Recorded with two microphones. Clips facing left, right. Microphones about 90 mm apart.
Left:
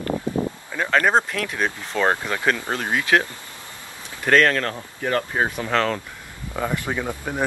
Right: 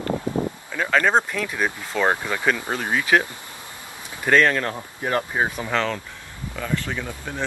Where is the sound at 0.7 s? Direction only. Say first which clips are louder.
Even; 15° left (ahead or behind).